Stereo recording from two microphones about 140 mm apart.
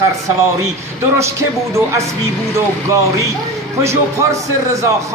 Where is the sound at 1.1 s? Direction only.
20° right (ahead or behind).